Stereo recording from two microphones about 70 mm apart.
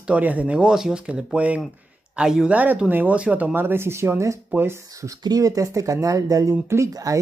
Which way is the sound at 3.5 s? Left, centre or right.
Right.